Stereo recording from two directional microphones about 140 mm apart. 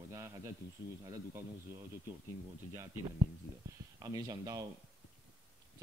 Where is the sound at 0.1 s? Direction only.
20° right (ahead or behind).